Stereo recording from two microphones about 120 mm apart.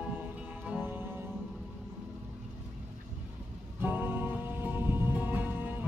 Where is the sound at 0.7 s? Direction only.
15° right (ahead or behind).